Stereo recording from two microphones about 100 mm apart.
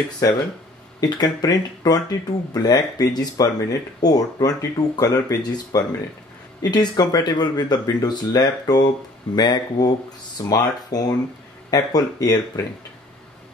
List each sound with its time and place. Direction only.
0.2 s speech: 30° left (ahead or behind)
1.0 s speech: 40° left (ahead or behind)